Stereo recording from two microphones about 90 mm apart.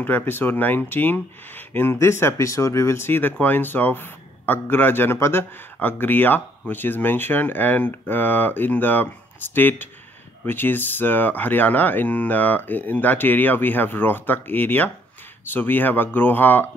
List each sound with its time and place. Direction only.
0.0 s speech: 20° left (ahead or behind)